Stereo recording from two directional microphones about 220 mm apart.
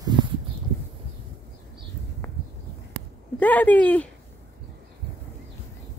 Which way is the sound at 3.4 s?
5° left (ahead or behind).